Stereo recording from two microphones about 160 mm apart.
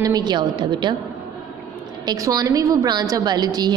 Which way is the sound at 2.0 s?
20° right (ahead or behind).